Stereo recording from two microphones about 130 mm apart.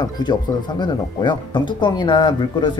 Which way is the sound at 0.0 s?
35° left (ahead or behind).